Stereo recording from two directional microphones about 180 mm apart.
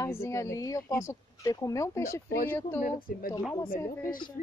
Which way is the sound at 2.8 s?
55° left (ahead or behind).